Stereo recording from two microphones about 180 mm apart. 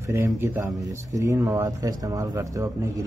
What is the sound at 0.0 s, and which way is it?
A man's voice, 15° right (ahead or behind).